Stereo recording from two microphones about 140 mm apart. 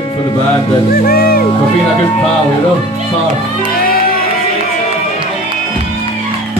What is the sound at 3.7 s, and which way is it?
Music, 90° left.